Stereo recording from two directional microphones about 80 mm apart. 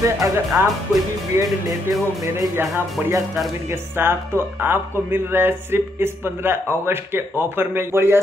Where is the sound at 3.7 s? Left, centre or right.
Right.